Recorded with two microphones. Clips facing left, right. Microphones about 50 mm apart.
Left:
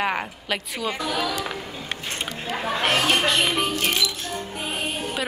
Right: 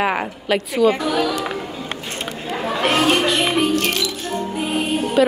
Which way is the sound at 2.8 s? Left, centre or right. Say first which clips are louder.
Right 4 dB; right.